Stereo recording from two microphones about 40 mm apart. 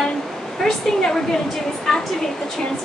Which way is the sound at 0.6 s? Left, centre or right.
Centre.